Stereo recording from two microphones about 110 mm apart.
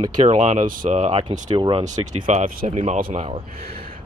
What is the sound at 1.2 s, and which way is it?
Speech, 50° right (ahead or behind).